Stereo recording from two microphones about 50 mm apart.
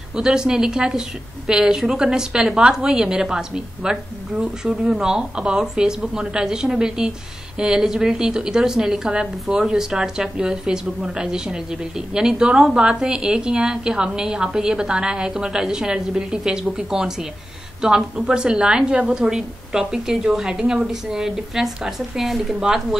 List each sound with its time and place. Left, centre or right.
0.1 s a woman's voice: centre